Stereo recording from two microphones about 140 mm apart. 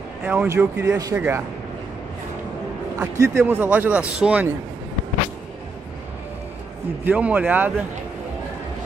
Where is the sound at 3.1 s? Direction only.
20° right (ahead or behind).